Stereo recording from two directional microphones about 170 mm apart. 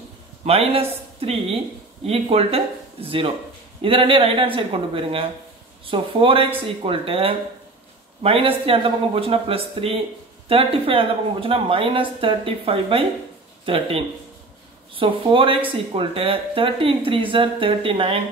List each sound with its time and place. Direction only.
0.5 s speech: 35° right (ahead or behind)